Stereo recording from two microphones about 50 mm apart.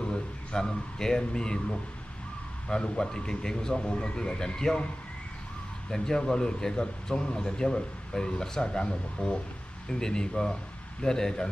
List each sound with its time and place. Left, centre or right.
0.0 s speech: centre
5.9 s speech: centre